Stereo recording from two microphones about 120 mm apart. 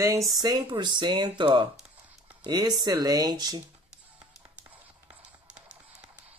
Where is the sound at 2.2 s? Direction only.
35° right (ahead or behind).